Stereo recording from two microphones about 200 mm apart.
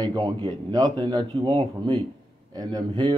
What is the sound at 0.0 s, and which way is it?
Speech, 20° right (ahead or behind).